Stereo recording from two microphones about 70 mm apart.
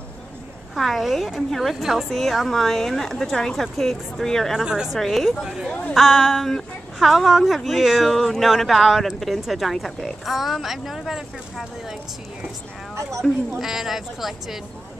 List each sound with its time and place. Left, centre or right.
0.7 s a woman's voice: centre
4.6 s a woman's voice: centre
4.9 s a woman's voice: centre
5.7 s a woman's voice: left
5.9 s a woman's voice: centre
13.6 s a woman's voice: centre